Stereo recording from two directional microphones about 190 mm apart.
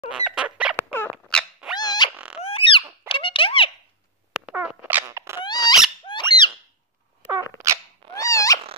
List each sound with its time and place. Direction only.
0.1 s bird: 5° right (ahead or behind)
1.1 s dog: centre (ahead or behind)
1.8 s dog: 20° left (ahead or behind)
2.1 s a sound: 5° right (ahead or behind)
2.4 s a sound: 30° left (ahead or behind)
4.3 s dog: 5° right (ahead or behind)
5.4 s dog: 20° left (ahead or behind)
6.0 s squeak: 25° left (ahead or behind)
7.2 s dog: 10° right (ahead or behind)
8.2 s cat: 15° left (ahead or behind)